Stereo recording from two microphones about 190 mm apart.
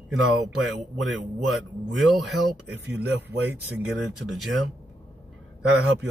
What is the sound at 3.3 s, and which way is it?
Speech, 65° right (ahead or behind).